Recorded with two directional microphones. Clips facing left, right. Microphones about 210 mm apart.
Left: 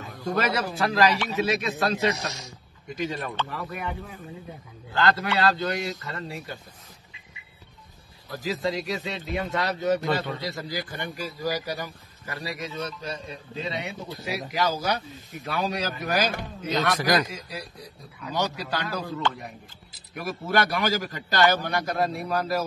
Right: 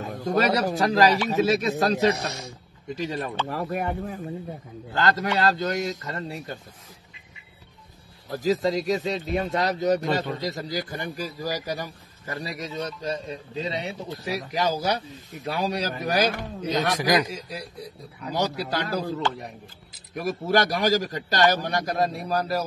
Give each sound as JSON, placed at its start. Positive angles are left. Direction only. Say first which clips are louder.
{"t": 0.0, "sound": "a man's voice", "louder": "right 4 dB", "side_deg": -45}
{"t": 2.1, "sound": "speech", "louder": "right 3 dB", "side_deg": -55}
{"t": 3.0, "sound": "a man's voice", "louder": "right 1 dB", "side_deg": -35}
{"t": 8.4, "sound": "a man's voice", "louder": "right 5 dB", "side_deg": -40}
{"t": 16.6, "sound": "speech", "louder": "right 1 dB", "side_deg": -15}
{"t": 18.2, "sound": "a man's voice", "louder": "right 2 dB", "side_deg": -35}